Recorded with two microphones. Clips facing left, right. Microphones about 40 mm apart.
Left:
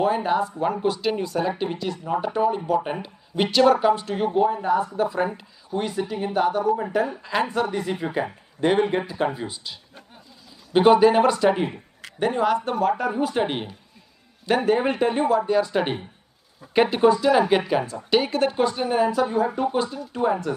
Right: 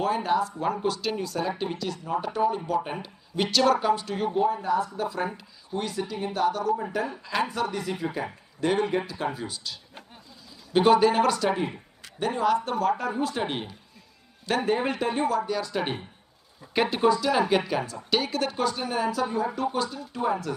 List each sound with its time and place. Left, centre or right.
0.0 s speech: centre
4.6 s speech: left
5.8 s speech: centre
6.0 s speech: left
6.3 s speech: centre
14.9 s speech: left
15.1 s speech: centre
15.4 s speech: left
17.6 s speech: left